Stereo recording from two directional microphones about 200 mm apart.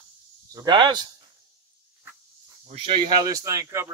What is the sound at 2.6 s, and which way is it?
Speech, 25° right (ahead or behind).